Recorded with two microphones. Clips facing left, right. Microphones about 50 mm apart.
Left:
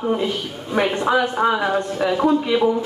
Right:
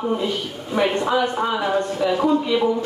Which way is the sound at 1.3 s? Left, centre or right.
Centre.